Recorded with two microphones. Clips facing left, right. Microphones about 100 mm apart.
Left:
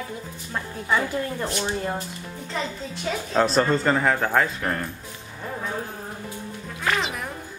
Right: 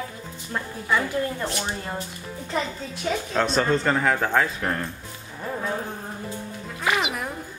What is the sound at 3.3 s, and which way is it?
Speech, centre (ahead or behind).